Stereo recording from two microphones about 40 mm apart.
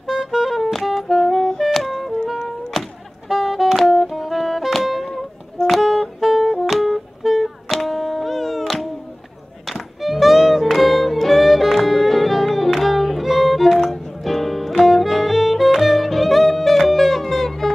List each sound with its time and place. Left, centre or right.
0.1 s music: centre
3.3 s music: centre
3.7 s music: centre
10.0 s music: centre